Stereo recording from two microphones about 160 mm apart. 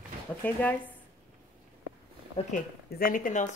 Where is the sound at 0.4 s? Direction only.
10° left (ahead or behind).